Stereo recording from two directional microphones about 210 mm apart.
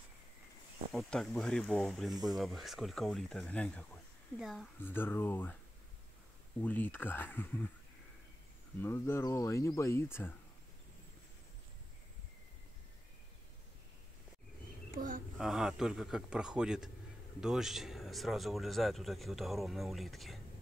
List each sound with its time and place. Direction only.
0.9 s speech: centre (ahead or behind)
4.7 s speech: 10° left (ahead or behind)
6.6 s speech: 10° left (ahead or behind)
8.8 s speech: 10° left (ahead or behind)
14.9 s speech: 40° right (ahead or behind)
15.3 s speech: centre (ahead or behind)